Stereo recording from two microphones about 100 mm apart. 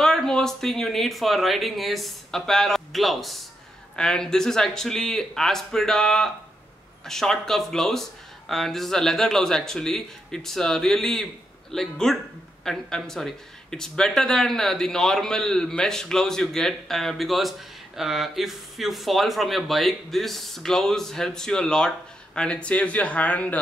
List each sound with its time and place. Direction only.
0.0 s speech: 5° left (ahead or behind)